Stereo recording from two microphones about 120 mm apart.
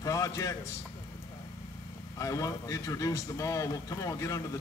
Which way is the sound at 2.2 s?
30° left (ahead or behind).